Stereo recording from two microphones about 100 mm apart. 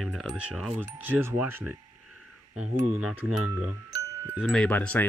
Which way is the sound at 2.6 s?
5° right (ahead or behind).